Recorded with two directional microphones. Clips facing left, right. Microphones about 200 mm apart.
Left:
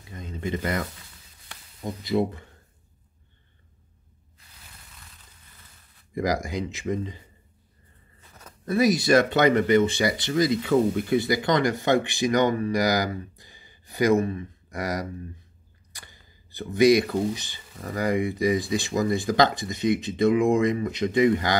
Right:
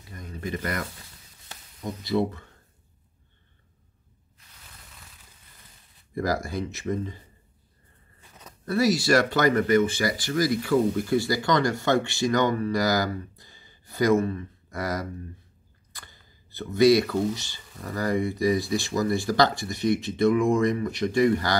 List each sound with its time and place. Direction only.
0.1 s speech: 25° left (ahead or behind)
2.0 s speech: 15° left (ahead or behind)
6.1 s speech: 15° left (ahead or behind)
8.6 s speech: 20° left (ahead or behind)
15.9 s a sound: 15° left (ahead or behind)
17.3 s speech: 15° left (ahead or behind)